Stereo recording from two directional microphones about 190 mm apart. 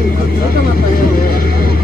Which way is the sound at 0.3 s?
50° left (ahead or behind).